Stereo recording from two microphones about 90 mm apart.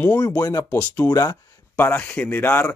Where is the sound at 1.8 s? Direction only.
20° left (ahead or behind).